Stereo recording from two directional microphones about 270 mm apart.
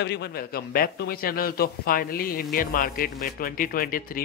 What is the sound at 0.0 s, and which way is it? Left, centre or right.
Speech, left.